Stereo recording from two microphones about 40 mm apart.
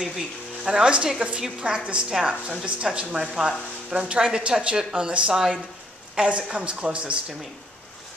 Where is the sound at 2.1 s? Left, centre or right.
Centre.